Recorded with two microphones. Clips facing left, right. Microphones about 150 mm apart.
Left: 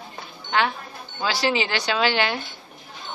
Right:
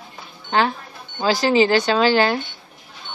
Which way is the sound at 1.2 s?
40° right (ahead or behind).